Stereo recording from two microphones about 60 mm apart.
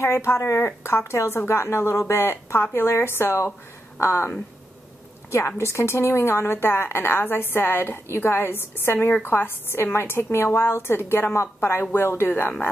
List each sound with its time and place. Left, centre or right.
0.0 s speech: left
5.6 s a woman's voice: left